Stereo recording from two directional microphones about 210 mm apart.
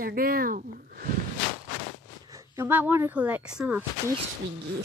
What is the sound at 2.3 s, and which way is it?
Speech, 10° right (ahead or behind).